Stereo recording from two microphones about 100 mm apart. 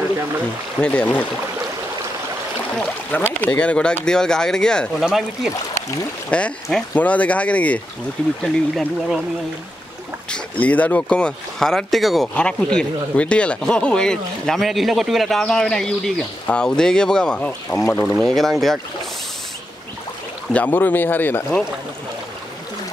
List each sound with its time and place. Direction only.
0.7 s speech: 10° left (ahead or behind)
3.1 s speech: 15° left (ahead or behind)
5.0 s speech: 5° right (ahead or behind)
6.3 s speech: 10° left (ahead or behind)
8.4 s speech: centre (ahead or behind)
10.6 s speech: 15° left (ahead or behind)
18.0 s speech: 5° left (ahead or behind)
20.5 s speech: 15° left (ahead or behind)